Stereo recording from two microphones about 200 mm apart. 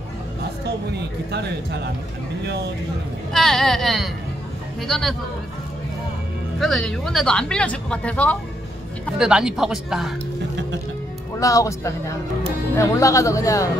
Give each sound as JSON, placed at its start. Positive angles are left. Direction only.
{"t": 0.4, "sound": "a man's voice", "side_deg": -55}
{"t": 3.3, "sound": "speech", "side_deg": 0}
{"t": 6.6, "sound": "speech", "side_deg": 0}
{"t": 11.3, "sound": "speech", "side_deg": 15}